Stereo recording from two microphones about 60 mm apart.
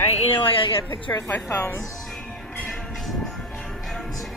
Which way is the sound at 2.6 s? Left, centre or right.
Centre.